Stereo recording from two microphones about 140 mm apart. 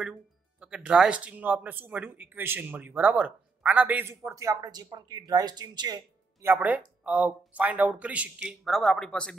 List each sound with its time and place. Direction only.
0.0 s speech: 10° right (ahead or behind); by 6.0 s 30° right (ahead or behind)
6.4 s speech: 15° right (ahead or behind)
8.6 s speech: centre (ahead or behind)